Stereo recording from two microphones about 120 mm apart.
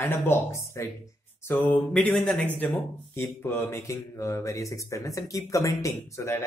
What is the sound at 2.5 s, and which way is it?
Speech, 15° left (ahead or behind).